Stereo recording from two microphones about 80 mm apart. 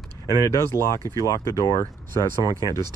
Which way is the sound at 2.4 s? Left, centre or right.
Right.